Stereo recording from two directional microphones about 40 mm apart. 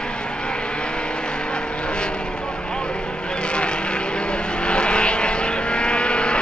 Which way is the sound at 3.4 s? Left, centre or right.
Left.